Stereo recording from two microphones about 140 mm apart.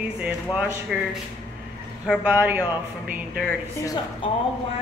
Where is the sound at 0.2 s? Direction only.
10° right (ahead or behind).